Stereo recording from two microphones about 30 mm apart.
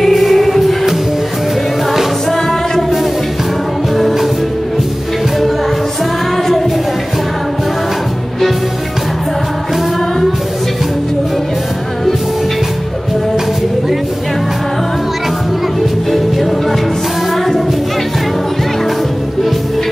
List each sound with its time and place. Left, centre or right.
0.0 s music: centre
3.9 s music: centre